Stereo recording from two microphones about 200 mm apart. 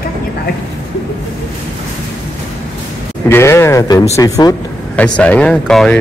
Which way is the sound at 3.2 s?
10° left (ahead or behind).